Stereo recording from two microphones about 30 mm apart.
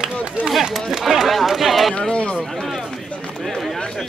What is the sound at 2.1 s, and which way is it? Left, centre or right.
Speech, left.